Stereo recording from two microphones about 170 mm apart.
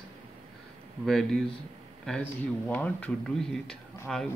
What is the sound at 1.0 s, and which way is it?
Speech, centre (ahead or behind).